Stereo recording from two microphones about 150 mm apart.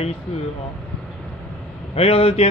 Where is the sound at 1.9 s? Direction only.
40° left (ahead or behind).